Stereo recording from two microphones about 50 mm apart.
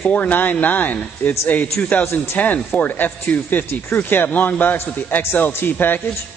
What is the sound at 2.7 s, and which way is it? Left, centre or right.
A man's voice, left.